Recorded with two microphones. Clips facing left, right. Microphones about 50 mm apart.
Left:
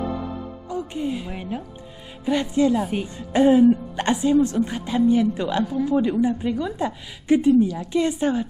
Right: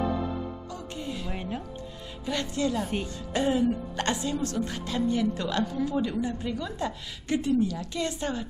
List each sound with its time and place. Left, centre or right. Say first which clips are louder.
0.7 s speech: left 9 dB; centre
1.3 s a woman's voice: left 4 dB; centre
2.2 s a woman's voice: left 9 dB; centre
3.2 s a woman's voice: left 11 dB; left
5.9 s a woman's voice: left 8 dB; left